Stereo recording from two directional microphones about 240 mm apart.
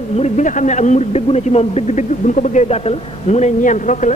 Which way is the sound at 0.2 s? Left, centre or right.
Left.